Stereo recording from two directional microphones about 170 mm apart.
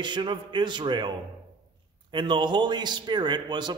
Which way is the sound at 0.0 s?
25° right (ahead or behind).